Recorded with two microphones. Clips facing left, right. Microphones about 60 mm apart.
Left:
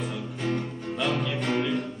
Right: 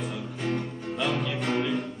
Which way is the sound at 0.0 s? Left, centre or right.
Centre.